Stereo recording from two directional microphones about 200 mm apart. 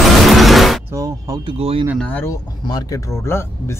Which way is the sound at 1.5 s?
30° right (ahead or behind).